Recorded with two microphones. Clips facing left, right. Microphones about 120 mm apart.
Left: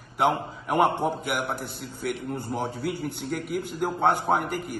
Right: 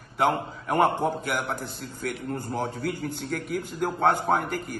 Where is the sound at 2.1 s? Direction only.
20° left (ahead or behind).